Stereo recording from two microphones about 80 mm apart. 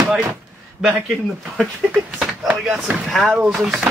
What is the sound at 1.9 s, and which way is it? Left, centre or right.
Speech, centre.